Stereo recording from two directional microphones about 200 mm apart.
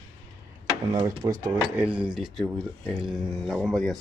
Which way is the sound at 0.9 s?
20° right (ahead or behind).